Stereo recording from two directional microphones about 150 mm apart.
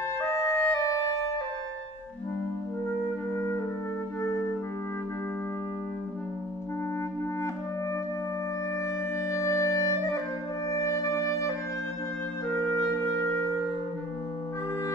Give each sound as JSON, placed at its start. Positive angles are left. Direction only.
{"t": 0.2, "sound": "clarinet", "side_deg": 20}
{"t": 9.2, "sound": "music", "side_deg": 20}